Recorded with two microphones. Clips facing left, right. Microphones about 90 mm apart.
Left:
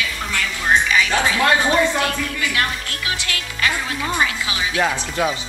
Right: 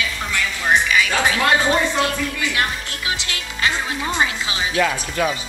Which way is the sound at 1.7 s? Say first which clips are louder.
Left 1 dB; 25° right (ahead or behind).